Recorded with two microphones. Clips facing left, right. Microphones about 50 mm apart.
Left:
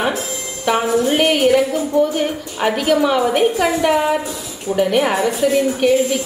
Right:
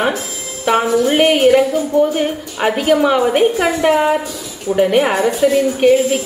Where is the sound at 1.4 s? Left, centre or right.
Right.